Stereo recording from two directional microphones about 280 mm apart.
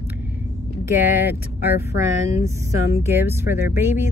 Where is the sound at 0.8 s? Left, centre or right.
Centre.